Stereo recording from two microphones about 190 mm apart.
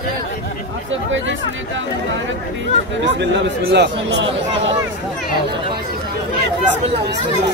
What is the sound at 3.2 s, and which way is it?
Speech, 65° right (ahead or behind).